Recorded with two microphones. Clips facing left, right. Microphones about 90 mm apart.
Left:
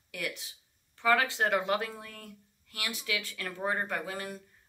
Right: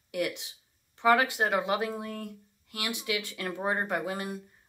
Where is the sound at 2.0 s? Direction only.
25° right (ahead or behind).